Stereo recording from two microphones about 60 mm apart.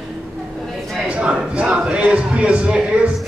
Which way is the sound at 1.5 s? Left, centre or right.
Centre.